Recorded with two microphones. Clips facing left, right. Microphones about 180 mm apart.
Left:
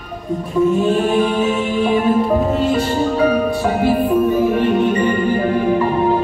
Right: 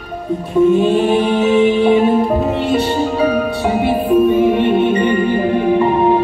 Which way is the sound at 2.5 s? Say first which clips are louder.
Right 1 dB; 20° right (ahead or behind).